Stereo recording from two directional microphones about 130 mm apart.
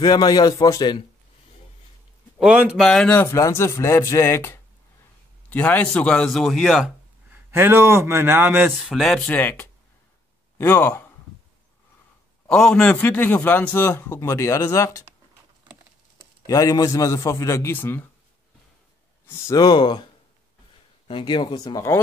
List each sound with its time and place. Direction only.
0.0 s speech: 30° left (ahead or behind)
2.3 s speech: 10° right (ahead or behind)
2.8 s a man's voice: 5° left (ahead or behind)
7.3 s speech: 15° right (ahead or behind)
8.8 s a man's voice: centre (ahead or behind)
9.3 s a man's voice: 15° left (ahead or behind)
12.4 s a man's voice: 5° left (ahead or behind); by 15.0 s 25° left (ahead or behind)
16.4 s speech: 25° left (ahead or behind)
19.2 s speech: 25° left (ahead or behind)
21.1 s speech: 40° left (ahead or behind)